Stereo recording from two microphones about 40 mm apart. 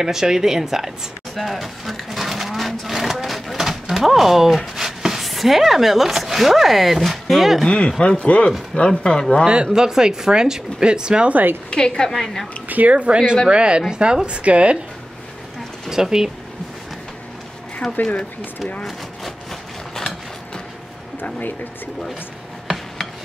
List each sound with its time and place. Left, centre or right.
0.0 s speech: centre
1.3 s vehicle: centre
3.9 s speech: centre
7.6 s speech: left
9.5 s speech: centre
11.7 s speech: left
12.1 s a woman's voice: centre
12.6 s a sound: right
12.9 s a woman's voice: right
15.9 s speech: centre
17.8 s speech: centre
21.2 s speech: left